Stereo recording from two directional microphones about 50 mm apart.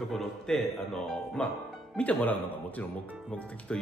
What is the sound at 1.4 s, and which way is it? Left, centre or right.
A man's voice, left.